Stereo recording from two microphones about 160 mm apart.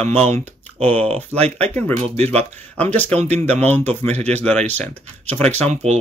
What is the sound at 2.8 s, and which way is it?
Speech, 10° left (ahead or behind).